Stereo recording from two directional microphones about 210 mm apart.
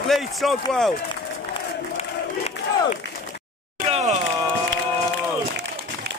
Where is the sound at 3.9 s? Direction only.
30° right (ahead or behind).